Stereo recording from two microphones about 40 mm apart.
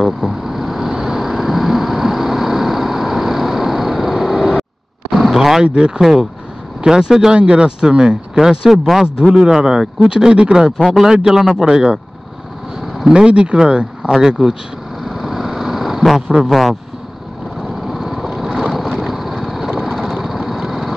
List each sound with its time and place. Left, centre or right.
0.0 s vehicle: centre
5.1 s a sound: centre
5.6 s speech: right
5.9 s speech: centre
11.7 s speech: right
13.1 s speech: right
14.2 s speech: centre
15.0 s vehicle: centre
16.2 s speech: centre
16.4 s speech: centre
17.8 s vehicle: centre
20.2 s lawn mower: centre